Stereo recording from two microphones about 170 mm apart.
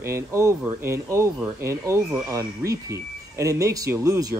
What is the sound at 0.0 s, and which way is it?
Speech, 15° right (ahead or behind).